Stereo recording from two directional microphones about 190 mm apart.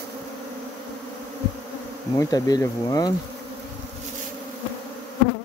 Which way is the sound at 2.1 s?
20° left (ahead or behind).